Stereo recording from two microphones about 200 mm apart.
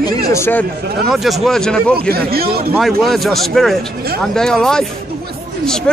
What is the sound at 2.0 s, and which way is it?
Speech, 50° right (ahead or behind).